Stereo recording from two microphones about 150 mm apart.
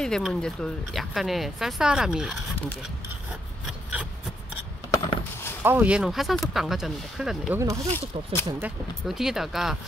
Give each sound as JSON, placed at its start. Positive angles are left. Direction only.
{"t": 0.0, "sound": "speech", "side_deg": 5}
{"t": 3.6, "sound": "rub", "side_deg": -5}
{"t": 4.9, "sound": "a sound", "side_deg": 20}
{"t": 5.6, "sound": "speech", "side_deg": -15}
{"t": 7.5, "sound": "speech", "side_deg": -20}
{"t": 7.9, "sound": "speech", "side_deg": 15}
{"t": 9.0, "sound": "speech", "side_deg": -5}